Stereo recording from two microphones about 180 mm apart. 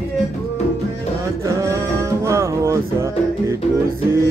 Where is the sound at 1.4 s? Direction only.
15° right (ahead or behind).